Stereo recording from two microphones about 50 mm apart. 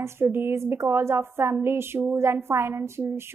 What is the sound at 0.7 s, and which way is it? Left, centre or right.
A woman's voice, right.